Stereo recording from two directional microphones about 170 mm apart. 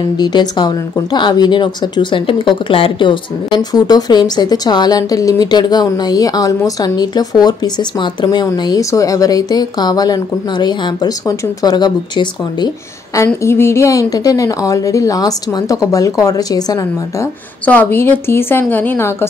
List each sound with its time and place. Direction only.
0.2 s speech: 25° left (ahead or behind)
17.6 s a woman's voice: 10° left (ahead or behind)